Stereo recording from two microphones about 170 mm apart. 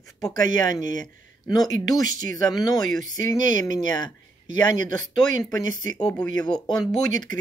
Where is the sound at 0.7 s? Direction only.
25° left (ahead or behind).